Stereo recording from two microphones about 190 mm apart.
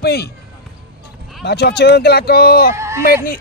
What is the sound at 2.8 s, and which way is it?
Speech, 15° right (ahead or behind).